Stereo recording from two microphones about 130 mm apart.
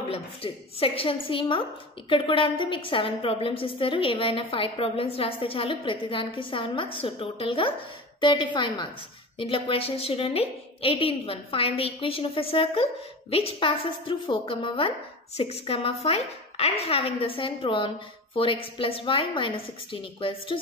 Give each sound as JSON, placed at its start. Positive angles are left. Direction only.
{"t": 0.1, "sound": "a woman's voice", "side_deg": 45}